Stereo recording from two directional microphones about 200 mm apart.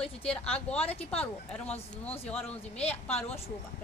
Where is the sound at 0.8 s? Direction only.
30° left (ahead or behind).